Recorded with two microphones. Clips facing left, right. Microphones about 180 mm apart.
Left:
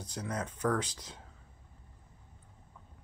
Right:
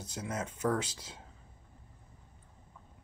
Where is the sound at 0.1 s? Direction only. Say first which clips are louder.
Even; 25° right (ahead or behind).